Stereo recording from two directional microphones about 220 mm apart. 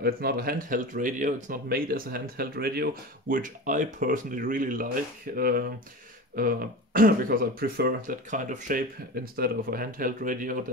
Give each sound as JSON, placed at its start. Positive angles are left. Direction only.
{"t": 0.0, "sound": "speech", "side_deg": -45}